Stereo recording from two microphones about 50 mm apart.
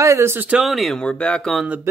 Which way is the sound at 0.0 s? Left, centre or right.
Right.